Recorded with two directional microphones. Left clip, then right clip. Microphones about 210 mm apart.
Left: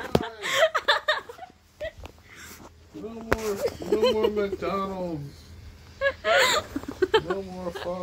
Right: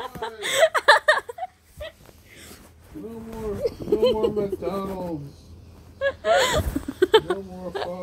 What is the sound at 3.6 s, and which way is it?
Speech, 10° left (ahead or behind).